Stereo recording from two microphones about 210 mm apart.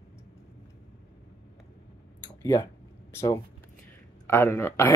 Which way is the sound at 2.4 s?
15° left (ahead or behind).